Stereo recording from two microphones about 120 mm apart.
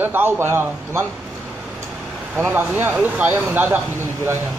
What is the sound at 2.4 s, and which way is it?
A man's voice, 15° right (ahead or behind).